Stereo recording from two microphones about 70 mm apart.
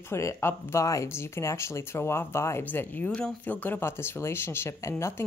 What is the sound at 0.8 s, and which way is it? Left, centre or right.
Speech, left.